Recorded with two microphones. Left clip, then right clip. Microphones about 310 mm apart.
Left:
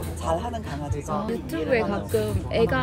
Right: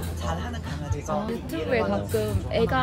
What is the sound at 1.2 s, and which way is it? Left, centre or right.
Speech, centre.